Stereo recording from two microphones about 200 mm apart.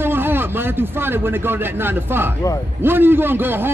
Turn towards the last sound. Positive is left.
turn(degrees=-10)  # may be behind; listen again after turning